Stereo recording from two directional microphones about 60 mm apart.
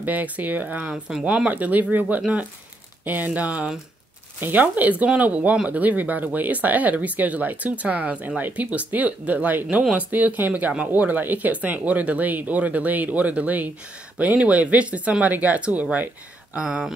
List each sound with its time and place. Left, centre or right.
0.0 s speech: right
10.1 s speech: right
16.5 s speech: centre